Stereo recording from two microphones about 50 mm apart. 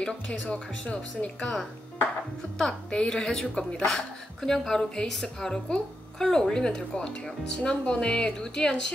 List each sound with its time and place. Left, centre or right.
0.0 s speech: left
2.6 s speech: centre